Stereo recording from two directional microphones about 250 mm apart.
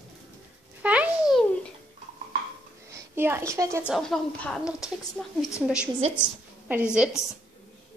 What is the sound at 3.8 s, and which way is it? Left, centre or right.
A woman's voice, centre.